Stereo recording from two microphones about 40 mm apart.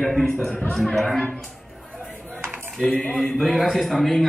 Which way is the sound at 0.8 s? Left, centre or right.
Centre.